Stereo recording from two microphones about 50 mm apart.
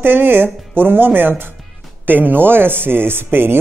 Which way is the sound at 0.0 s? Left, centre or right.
Right.